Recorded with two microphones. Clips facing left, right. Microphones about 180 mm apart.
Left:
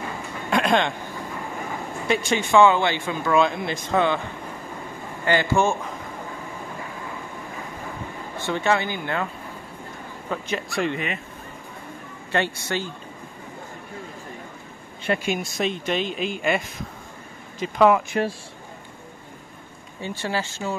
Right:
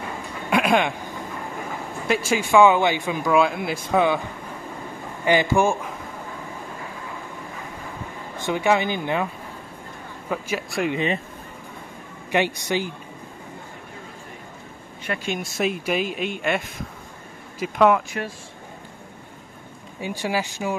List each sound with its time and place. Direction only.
0.5 s a sound: 10° right (ahead or behind)
2.0 s speech: 5° right (ahead or behind)
5.2 s speech: 15° right (ahead or behind)
8.4 s speech: 15° right (ahead or behind)
10.3 s speech: 5° right (ahead or behind)
12.3 s speech: 15° right (ahead or behind)
15.2 s speech: centre (ahead or behind)
20.0 s speech: 10° right (ahead or behind)